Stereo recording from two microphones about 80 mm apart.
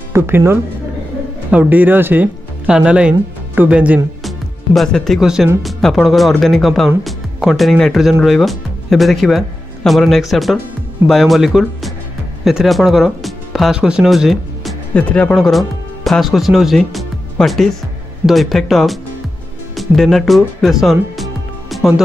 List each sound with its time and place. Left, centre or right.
0.1 s speech: right
1.5 s speech: centre
2.7 s speech: centre
4.2 s music: centre
5.2 s speech: centre
7.0 s music: centre
7.9 s speech: centre
15.0 s speech: centre
15.3 s speech: centre